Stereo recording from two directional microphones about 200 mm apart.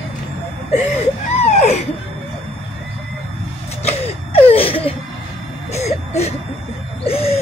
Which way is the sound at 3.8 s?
30° left (ahead or behind).